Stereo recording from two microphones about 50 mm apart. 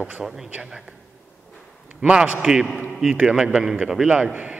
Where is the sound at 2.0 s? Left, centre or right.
Centre.